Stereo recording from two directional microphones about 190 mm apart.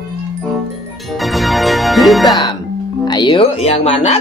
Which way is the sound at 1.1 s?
Centre (ahead or behind).